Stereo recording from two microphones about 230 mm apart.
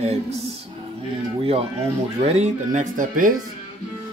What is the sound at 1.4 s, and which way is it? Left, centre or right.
Speech, right.